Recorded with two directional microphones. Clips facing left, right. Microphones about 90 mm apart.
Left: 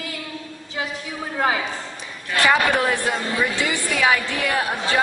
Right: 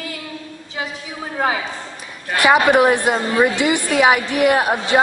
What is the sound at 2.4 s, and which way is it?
A woman's voice, 20° right (ahead or behind).